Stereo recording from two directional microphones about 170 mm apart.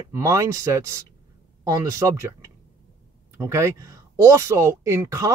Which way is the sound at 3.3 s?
15° right (ahead or behind).